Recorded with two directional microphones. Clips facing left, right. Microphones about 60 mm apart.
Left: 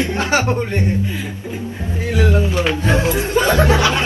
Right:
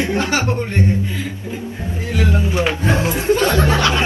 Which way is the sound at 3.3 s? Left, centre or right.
Centre.